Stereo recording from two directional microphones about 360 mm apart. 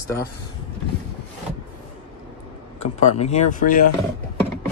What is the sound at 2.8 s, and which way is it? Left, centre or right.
Speech, centre.